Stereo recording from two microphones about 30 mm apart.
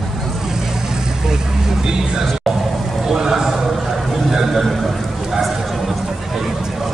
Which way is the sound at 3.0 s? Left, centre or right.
Centre.